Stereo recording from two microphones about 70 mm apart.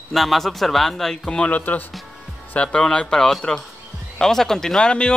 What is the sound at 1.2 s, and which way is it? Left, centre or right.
Speech, centre.